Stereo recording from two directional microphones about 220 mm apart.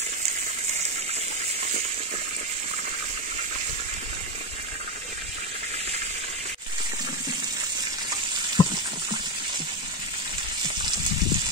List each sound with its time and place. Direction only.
8.6 s water: 20° left (ahead or behind)